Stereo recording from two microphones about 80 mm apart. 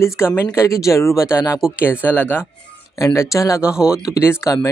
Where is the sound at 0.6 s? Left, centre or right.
Left.